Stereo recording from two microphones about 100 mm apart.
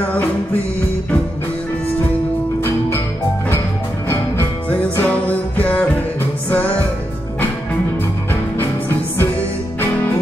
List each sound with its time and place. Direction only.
4.6 s music: 15° left (ahead or behind)
8.5 s music: 20° left (ahead or behind)